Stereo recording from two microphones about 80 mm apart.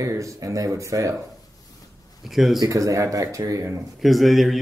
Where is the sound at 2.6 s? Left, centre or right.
Right.